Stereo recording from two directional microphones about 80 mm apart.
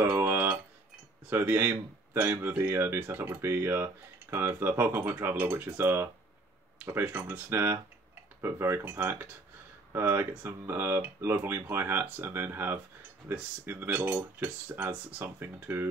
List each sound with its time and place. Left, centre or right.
0.2 s a sound: right
1.4 s speech: right
2.1 s speech: right
2.4 s speech: centre